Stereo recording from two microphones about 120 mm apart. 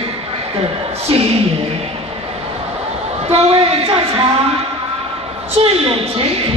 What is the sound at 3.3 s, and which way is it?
Speech, 55° right (ahead or behind).